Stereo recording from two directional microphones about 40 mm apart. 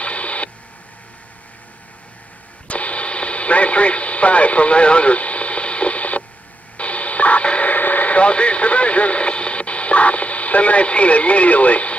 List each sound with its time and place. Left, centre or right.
0.0 s a sound: left
2.7 s radio: left
7.7 s radio: left